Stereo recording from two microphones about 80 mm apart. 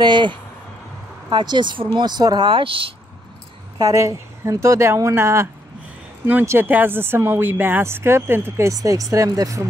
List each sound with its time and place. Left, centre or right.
0.0 s speech: right
1.3 s a woman's voice: right
2.0 s speech: right
3.9 s speech: right
8.7 s speech: right